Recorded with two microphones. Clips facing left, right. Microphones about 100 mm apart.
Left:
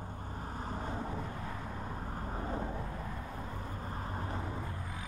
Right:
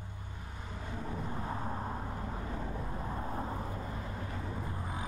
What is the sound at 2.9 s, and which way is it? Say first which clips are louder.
Vehicle: right 3 dB; 25° right (ahead or behind).